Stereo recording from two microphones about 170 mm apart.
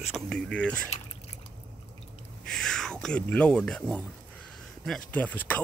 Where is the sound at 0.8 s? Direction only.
40° left (ahead or behind).